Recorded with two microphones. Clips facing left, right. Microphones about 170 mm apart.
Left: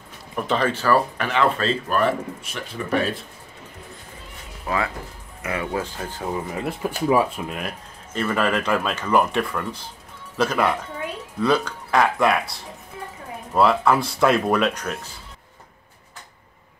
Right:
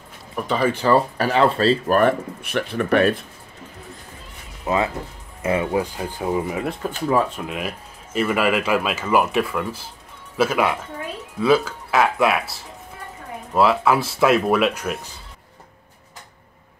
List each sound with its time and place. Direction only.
0.4 s speech: centre (ahead or behind)
0.7 s speech: 20° right (ahead or behind)
1.1 s speech: 35° right (ahead or behind)
2.0 s speech: 60° right (ahead or behind)
4.6 s speech: 20° right (ahead or behind)
7.1 s speech: 10° left (ahead or behind)
7.4 s speech: 5° right (ahead or behind)